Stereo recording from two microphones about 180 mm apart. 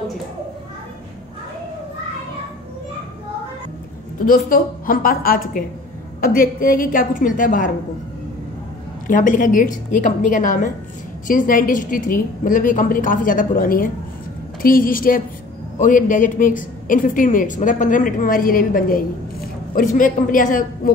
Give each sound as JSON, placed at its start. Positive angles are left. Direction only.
{"t": 4.3, "sound": "a woman's voice", "side_deg": 50}
{"t": 9.0, "sound": "a woman's voice", "side_deg": 45}